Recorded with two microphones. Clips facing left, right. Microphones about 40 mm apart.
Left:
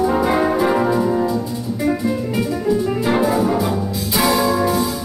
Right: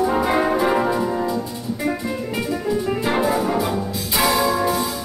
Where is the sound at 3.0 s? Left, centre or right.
Centre.